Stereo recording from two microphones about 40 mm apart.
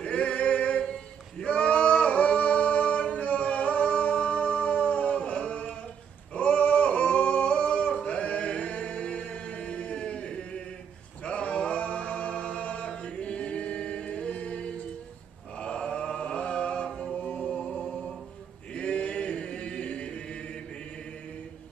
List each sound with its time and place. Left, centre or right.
0.0 s a sound: left
0.9 s singing: left
6.3 s a sound: left
11.2 s a capella: left
15.9 s music: left
17.2 s music: left
17.6 s mantra: centre
18.7 s choir: left